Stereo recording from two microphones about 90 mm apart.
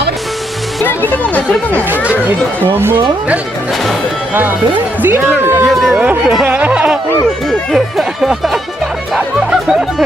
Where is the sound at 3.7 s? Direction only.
Centre (ahead or behind).